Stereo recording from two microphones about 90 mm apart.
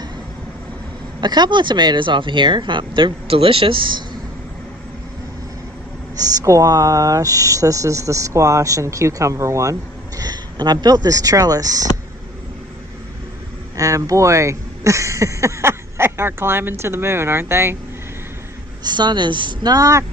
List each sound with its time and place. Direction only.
1.2 s speech: 55° right (ahead or behind)
6.1 s speech: 45° right (ahead or behind)
13.7 s speech: 40° right (ahead or behind)
18.9 s speech: 55° right (ahead or behind); by 20.1 s 35° right (ahead or behind)